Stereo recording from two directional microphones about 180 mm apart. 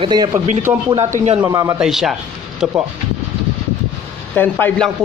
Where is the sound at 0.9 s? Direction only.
35° right (ahead or behind).